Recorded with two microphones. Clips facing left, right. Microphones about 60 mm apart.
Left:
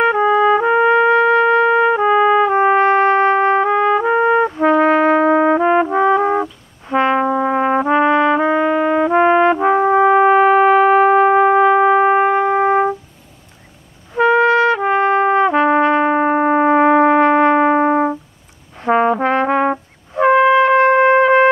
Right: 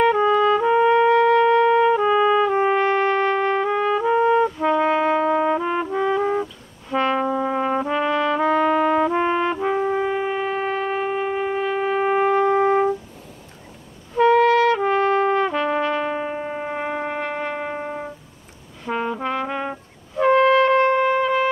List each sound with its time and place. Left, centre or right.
0.0 s trumpet: left
8.6 s brass instrument: centre
9.1 s brass instrument: left
10.3 s shofar: left
14.1 s trumpet: left
18.8 s brass instrument: left
20.2 s brass instrument: left